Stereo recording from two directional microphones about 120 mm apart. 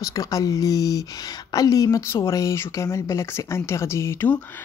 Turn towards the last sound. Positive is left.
turn(degrees=20)  # may be behind; listen again after turning